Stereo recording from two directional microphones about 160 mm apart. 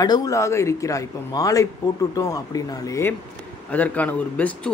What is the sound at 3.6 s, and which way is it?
Speech, 10° left (ahead or behind).